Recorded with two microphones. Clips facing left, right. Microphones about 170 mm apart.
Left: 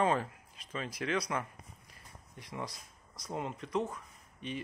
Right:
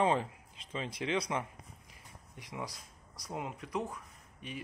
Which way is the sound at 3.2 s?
5° right (ahead or behind).